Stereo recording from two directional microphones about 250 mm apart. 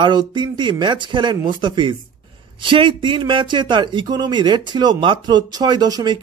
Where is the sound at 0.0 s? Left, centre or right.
Centre.